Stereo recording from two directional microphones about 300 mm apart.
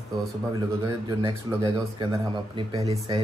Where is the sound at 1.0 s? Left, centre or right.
Centre.